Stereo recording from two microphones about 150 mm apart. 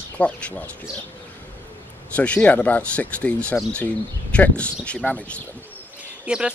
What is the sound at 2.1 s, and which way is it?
Speech, 10° left (ahead or behind).